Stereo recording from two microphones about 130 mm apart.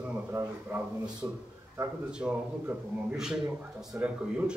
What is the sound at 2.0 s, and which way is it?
A man's voice, 10° right (ahead or behind).